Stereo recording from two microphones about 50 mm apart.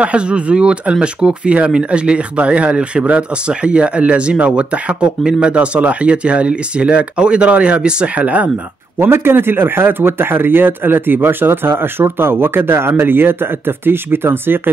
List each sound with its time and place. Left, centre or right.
0.0 s speech: right
9.0 s speech: right